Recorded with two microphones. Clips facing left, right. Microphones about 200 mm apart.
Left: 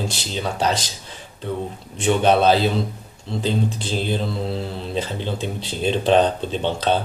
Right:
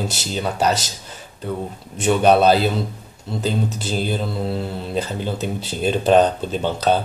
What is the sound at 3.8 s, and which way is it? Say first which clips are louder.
Speech: right 1 dB; 5° right (ahead or behind).